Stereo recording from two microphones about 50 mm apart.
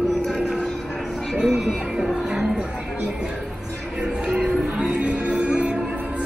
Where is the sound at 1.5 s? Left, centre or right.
Centre.